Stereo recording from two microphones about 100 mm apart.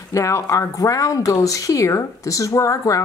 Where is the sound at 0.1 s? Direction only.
30° left (ahead or behind).